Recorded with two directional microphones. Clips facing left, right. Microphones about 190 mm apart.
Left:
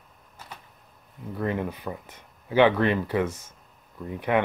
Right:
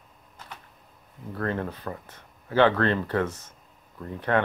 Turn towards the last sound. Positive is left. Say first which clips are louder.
# left 1 dB
turn(degrees=15)  # may be behind; listen again after turning